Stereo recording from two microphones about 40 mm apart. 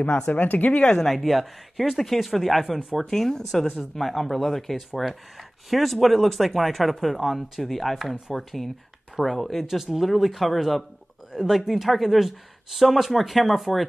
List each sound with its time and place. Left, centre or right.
0.3 s speech: left
0.8 s speech: centre
1.1 s speech: centre